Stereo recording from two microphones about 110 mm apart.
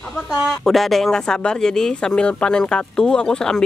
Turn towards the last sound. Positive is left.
turn(degrees=5)  # may be behind; listen again after turning